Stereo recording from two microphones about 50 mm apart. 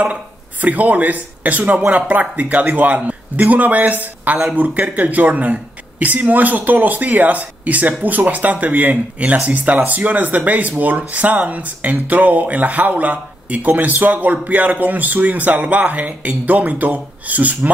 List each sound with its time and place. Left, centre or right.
0.0 s speech: right